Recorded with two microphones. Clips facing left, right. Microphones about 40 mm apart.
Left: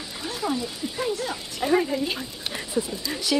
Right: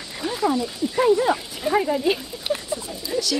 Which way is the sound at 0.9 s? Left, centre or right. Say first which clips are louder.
Right 11 dB; right.